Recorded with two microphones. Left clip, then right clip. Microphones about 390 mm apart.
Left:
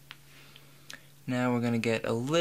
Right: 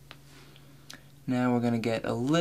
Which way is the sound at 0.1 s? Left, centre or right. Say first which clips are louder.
Left 1 dB; left.